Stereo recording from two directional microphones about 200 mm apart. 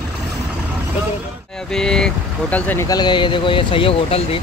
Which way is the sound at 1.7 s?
5° left (ahead or behind).